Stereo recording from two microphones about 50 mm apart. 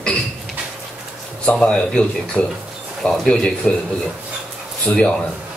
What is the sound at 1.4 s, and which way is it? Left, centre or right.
Speech, left.